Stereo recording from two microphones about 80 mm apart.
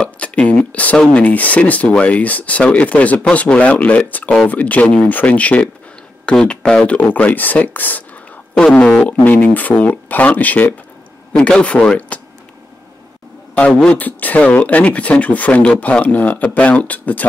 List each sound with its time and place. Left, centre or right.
0.0 s a sound: centre
0.9 s speech: centre
7.0 s speech: centre
13.8 s speech: left